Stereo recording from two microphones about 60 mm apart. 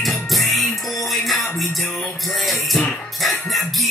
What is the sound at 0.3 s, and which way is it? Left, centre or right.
Music, centre.